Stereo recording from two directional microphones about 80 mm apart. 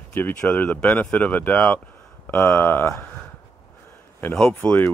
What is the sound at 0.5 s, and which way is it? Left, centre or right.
Speech, centre.